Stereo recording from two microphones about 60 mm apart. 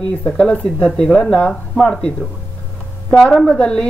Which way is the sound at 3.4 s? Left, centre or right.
Centre.